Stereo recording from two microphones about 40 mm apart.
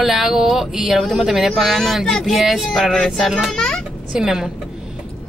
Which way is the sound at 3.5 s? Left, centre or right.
Centre.